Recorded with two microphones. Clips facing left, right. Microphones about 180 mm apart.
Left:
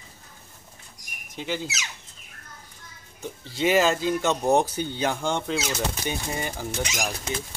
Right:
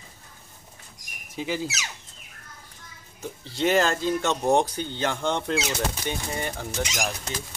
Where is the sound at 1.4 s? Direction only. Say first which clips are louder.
Right 1 dB; 5° right (ahead or behind).